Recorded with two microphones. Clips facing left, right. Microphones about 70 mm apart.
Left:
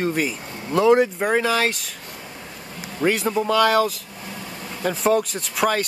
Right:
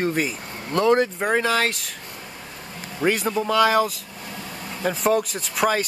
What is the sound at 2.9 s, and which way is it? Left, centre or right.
Speech, centre.